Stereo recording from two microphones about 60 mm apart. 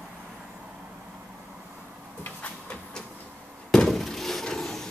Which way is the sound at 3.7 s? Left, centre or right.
Centre.